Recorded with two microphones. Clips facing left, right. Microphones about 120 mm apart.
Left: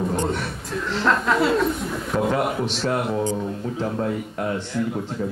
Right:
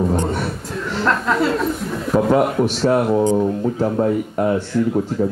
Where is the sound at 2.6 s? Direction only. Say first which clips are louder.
Right 7 dB; centre (ahead or behind).